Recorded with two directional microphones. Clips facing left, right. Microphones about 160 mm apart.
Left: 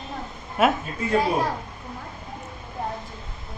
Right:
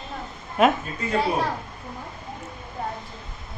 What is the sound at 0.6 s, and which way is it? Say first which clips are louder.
Speech: right 2 dB; 5° left (ahead or behind).